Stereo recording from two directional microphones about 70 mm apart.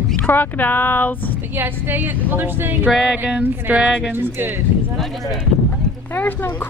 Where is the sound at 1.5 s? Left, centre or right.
Right.